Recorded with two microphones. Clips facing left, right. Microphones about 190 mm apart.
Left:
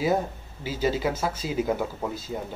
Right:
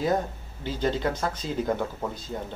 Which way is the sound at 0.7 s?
5° left (ahead or behind).